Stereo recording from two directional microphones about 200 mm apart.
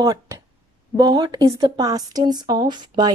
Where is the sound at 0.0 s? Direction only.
15° right (ahead or behind).